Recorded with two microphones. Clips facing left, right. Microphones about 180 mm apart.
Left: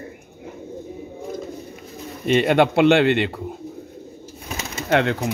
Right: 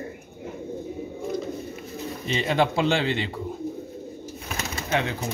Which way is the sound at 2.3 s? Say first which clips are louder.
Left 7 dB; 65° left (ahead or behind).